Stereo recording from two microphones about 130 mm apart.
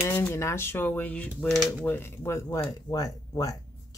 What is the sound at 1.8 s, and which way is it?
Speech, 15° left (ahead or behind).